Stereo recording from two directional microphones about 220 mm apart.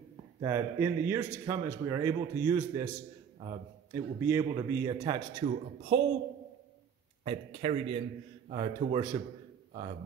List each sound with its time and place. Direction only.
0.4 s speech: 15° right (ahead or behind)
3.9 s speech: 10° right (ahead or behind)
7.2 s speech: 25° right (ahead or behind)